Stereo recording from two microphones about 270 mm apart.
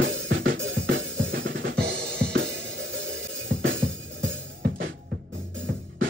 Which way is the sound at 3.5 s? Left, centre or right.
Right.